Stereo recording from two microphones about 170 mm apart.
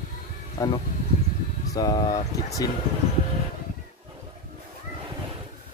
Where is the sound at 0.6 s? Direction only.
20° left (ahead or behind).